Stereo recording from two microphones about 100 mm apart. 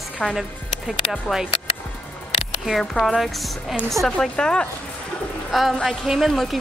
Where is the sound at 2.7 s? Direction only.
Centre (ahead or behind).